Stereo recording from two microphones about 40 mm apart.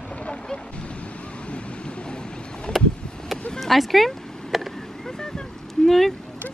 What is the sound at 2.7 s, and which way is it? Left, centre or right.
Vehicle, left.